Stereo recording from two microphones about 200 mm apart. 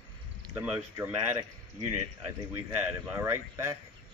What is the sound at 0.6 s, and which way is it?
Speech, 10° right (ahead or behind).